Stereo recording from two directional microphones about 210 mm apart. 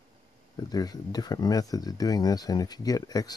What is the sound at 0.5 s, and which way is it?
Speech, 20° left (ahead or behind).